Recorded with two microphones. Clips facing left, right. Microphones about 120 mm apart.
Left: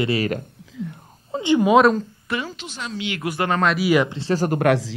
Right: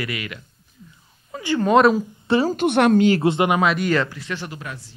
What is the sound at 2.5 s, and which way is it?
Speech, 60° right (ahead or behind).